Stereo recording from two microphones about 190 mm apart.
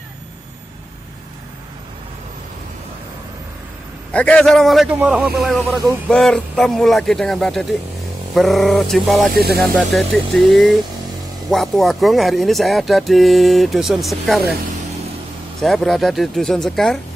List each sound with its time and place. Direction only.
4.1 s a man's voice: 5° left (ahead or behind)
15.6 s a man's voice: centre (ahead or behind)